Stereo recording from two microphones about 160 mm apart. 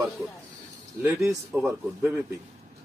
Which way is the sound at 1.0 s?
15° right (ahead or behind).